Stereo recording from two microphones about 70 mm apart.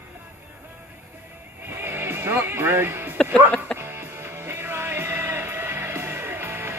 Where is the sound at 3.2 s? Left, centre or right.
Centre.